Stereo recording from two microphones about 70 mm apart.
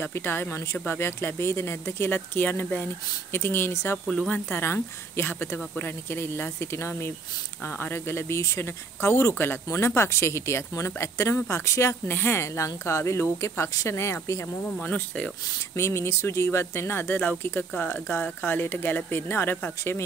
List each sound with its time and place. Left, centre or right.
0.0 s speech: left
7.6 s speech: left
9.3 s speech: left
9.7 s speech: left
12.1 s speech: left
14.6 s speech: left
15.7 s speech: left